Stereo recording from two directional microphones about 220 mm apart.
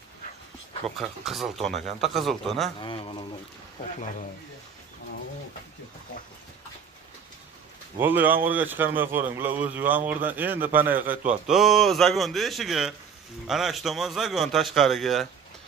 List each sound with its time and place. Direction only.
0.8 s speech: centre (ahead or behind)
2.8 s speech: 25° left (ahead or behind)
8.0 s speech: 10° right (ahead or behind)